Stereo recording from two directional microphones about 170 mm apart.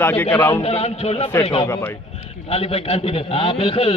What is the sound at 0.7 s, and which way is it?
Speech, 35° left (ahead or behind).